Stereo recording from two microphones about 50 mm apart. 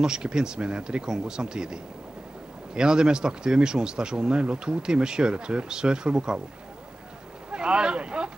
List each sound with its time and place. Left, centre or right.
0.0 s speech: centre
7.5 s speech: centre